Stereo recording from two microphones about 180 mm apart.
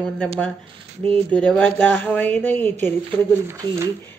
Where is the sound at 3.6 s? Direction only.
20° right (ahead or behind).